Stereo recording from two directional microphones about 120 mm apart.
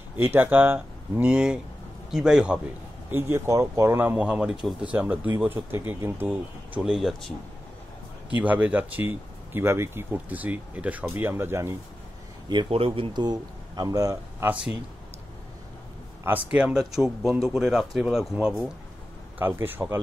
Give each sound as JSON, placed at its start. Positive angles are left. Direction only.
{"t": 0.2, "sound": "speech", "side_deg": -15}
{"t": 3.1, "sound": "speech", "side_deg": -20}
{"t": 6.8, "sound": "speech", "side_deg": -5}
{"t": 8.4, "sound": "speech", "side_deg": -15}
{"t": 12.4, "sound": "speech", "side_deg": -45}
{"t": 14.4, "sound": "speech", "side_deg": -10}
{"t": 16.5, "sound": "speech", "side_deg": -5}
{"t": 19.3, "sound": "speech", "side_deg": -15}